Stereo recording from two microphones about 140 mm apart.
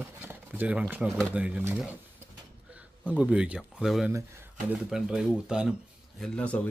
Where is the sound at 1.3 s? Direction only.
10° right (ahead or behind).